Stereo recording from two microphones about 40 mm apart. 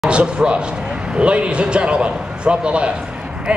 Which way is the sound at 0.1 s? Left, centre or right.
Right.